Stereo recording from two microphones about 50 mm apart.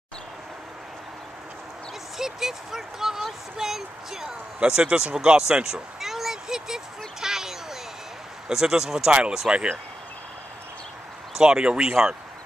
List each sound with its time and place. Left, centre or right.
2.1 s speech: centre
4.6 s speech: centre
5.5 s a sound: centre
8.5 s speech: centre
11.3 s speech: centre